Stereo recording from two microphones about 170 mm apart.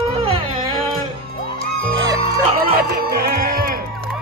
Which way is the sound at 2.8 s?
65° right (ahead or behind).